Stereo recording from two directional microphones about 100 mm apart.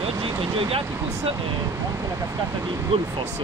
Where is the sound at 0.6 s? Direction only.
70° right (ahead or behind).